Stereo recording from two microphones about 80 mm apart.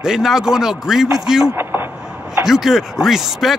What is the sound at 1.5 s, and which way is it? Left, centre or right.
Vehicle, right.